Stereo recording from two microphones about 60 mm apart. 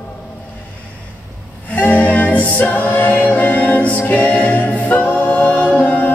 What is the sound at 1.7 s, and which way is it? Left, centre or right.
Music, left.